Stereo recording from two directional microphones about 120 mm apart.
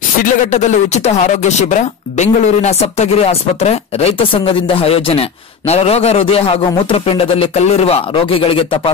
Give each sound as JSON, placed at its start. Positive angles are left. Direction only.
{"t": 0.5, "sound": "speech", "side_deg": 75}